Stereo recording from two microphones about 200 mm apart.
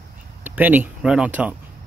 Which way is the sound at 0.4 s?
10° right (ahead or behind).